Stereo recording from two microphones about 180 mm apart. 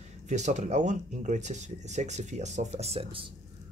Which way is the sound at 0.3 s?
40° right (ahead or behind).